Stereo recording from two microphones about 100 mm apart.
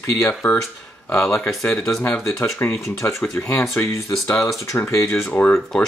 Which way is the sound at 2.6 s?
25° left (ahead or behind).